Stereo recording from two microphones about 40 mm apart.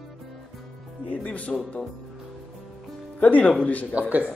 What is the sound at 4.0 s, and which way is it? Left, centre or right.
Speech, right.